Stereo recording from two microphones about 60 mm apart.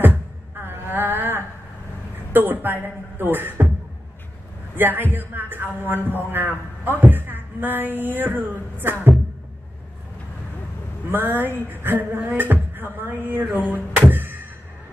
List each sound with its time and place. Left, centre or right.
0.0 s music: right
2.3 s speech: right
4.7 s speech: right
11.1 s a sound: right